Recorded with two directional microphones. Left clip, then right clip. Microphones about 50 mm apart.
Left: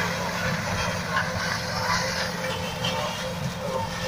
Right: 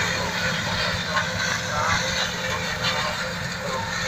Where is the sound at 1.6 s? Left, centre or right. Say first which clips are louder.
Right 2 dB; left.